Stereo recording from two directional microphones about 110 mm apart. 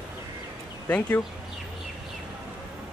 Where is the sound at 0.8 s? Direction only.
15° left (ahead or behind).